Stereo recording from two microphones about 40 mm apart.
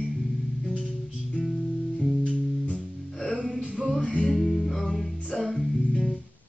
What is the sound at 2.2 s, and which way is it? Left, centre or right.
Music, left.